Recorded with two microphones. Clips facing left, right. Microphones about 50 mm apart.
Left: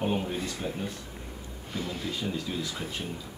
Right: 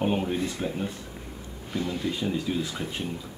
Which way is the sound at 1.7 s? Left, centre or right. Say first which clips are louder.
Right 5 dB; centre.